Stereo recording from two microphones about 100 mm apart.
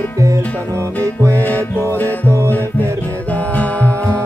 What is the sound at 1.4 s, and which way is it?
Music, 20° left (ahead or behind).